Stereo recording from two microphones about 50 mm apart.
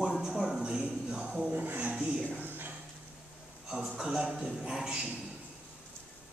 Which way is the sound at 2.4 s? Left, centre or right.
Right.